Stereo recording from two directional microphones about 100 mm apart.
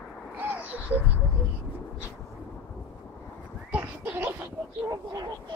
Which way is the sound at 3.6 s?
20° right (ahead or behind).